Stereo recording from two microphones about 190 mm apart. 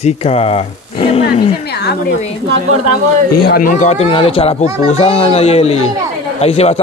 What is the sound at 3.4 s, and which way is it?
A man's voice, 45° left (ahead or behind).